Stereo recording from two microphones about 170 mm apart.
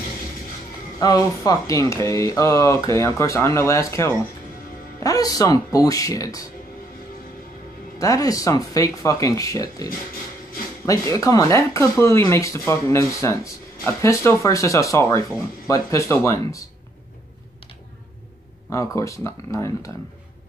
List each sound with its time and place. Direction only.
0.9 s speech: 20° left (ahead or behind)
8.0 s speech: 20° left (ahead or behind)
10.9 s speech: 20° left (ahead or behind)
18.7 s speech: 20° left (ahead or behind)